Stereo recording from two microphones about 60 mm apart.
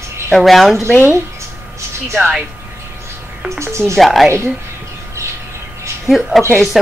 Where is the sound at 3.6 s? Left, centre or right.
Right.